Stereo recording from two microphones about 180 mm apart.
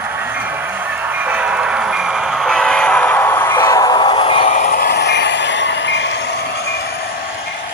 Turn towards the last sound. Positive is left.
turn(degrees=65)  # may be behind; listen again after turning